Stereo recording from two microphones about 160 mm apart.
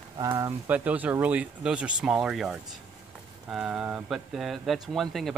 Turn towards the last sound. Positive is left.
turn(degrees=0)  # may be behind; listen again after turning